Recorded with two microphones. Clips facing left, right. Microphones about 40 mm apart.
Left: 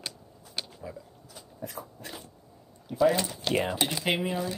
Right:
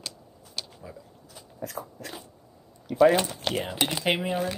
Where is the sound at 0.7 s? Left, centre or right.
Centre.